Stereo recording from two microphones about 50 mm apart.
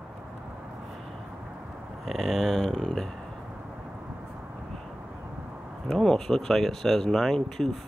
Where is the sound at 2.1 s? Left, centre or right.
Centre.